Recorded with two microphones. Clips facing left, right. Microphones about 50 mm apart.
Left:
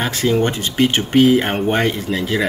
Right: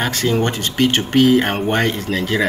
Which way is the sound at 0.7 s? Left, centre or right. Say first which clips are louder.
Left 1 dB; centre.